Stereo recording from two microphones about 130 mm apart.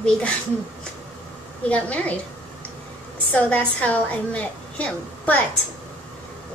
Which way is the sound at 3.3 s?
10° left (ahead or behind).